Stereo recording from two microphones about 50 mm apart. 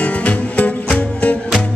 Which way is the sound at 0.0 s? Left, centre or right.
Left.